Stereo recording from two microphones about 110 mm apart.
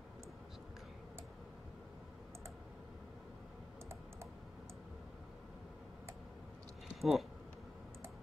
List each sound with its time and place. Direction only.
7.0 s speech: centre (ahead or behind)